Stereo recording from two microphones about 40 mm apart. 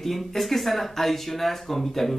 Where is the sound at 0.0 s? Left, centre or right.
Centre.